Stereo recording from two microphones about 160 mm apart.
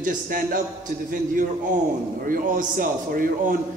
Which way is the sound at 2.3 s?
55° right (ahead or behind).